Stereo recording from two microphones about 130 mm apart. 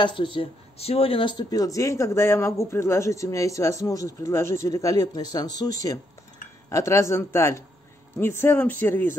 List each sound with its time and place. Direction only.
0.0 s speech: 40° left (ahead or behind); by 9.1 s 15° left (ahead or behind)